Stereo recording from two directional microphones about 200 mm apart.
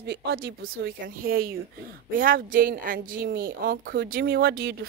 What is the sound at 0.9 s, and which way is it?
A woman's voice, 45° right (ahead or behind).